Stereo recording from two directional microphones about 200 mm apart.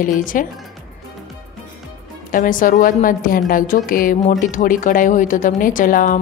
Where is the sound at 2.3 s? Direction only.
45° left (ahead or behind).